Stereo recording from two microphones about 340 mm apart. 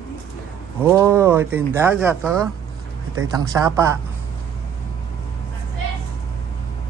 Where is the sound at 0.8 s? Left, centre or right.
Centre.